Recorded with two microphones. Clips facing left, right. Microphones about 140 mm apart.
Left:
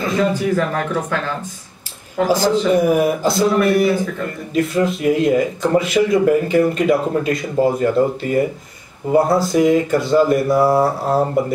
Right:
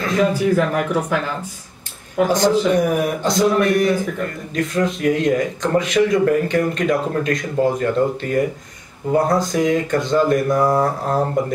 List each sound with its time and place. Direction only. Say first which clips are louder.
0.0 s a sound: even; 5° left (ahead or behind)
0.3 s speech: right 1 dB; 15° right (ahead or behind)
2.2 s a man's voice: left 1 dB; 5° left (ahead or behind)